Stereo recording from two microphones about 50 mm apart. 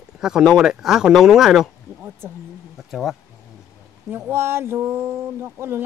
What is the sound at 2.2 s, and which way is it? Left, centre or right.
Speech, right.